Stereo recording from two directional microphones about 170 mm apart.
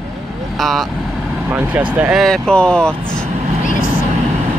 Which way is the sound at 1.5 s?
10° right (ahead or behind).